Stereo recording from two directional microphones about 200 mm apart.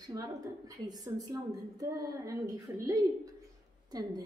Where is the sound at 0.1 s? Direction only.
15° right (ahead or behind).